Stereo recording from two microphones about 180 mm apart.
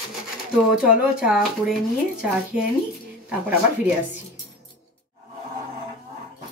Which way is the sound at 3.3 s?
10° right (ahead or behind).